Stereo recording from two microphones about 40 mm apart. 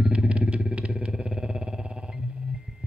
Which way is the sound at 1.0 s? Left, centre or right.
Right.